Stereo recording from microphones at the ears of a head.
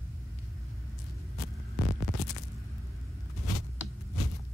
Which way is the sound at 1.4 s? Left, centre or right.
Left.